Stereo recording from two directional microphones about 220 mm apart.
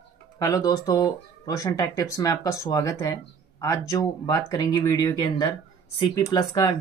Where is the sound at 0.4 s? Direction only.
15° left (ahead or behind).